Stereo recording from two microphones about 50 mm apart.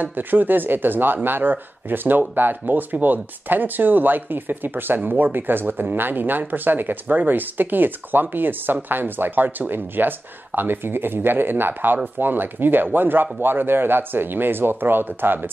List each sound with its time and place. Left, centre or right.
0.0 s speech: right